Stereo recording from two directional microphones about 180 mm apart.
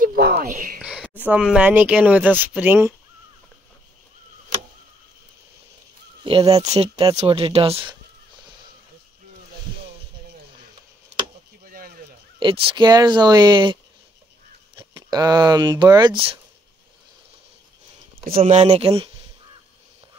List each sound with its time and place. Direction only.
0.0 s a sound: 60° right (ahead or behind)
0.5 s speech: 50° right (ahead or behind)
0.7 s a sound: 5° right (ahead or behind)
1.2 s speech: 5° right (ahead or behind)
6.2 s speech: 30° right (ahead or behind)
11.6 s a sound: 50° right (ahead or behind)
12.4 s speech: 30° right (ahead or behind)
14.8 s speech: 25° right (ahead or behind)
18.2 s speech: 35° right (ahead or behind)